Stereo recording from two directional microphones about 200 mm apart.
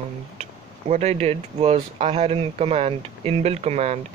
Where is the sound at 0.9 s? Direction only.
30° right (ahead or behind).